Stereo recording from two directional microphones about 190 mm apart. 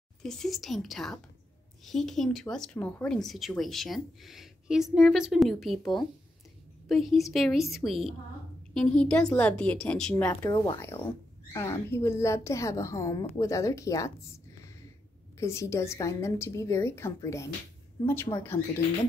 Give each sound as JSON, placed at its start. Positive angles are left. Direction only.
{"t": 0.2, "sound": "speech", "side_deg": 0}
{"t": 6.9, "sound": "a woman's voice", "side_deg": 0}
{"t": 10.5, "sound": "a woman's voice", "side_deg": 20}